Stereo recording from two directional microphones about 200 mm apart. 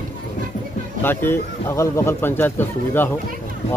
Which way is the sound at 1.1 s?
15° left (ahead or behind).